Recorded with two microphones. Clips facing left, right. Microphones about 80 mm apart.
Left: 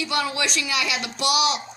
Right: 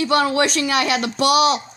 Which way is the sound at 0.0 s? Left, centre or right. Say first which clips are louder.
Right 8 dB; right.